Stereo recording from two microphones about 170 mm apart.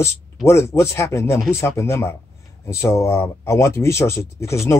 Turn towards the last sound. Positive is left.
turn(degrees=15)  # may be behind; listen again after turning